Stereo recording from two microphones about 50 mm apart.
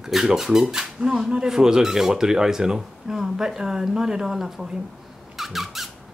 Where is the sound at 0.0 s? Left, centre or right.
Centre.